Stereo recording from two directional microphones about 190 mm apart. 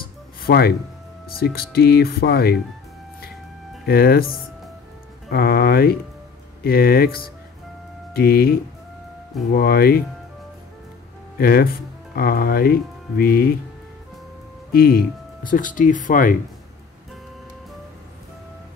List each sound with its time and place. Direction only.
0.0 s a sound: 55° left (ahead or behind)
1.3 s speech: 55° left (ahead or behind)
3.8 s speech: 55° left (ahead or behind)
5.3 s speech: 55° left (ahead or behind)
11.3 s speech: 50° left (ahead or behind)
14.7 s speech: 50° left (ahead or behind)